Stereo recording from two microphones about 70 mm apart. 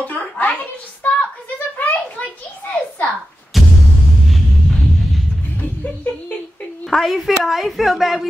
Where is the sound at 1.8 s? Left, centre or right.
Left.